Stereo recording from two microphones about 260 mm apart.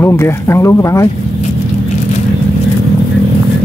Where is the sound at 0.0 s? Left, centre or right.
Centre.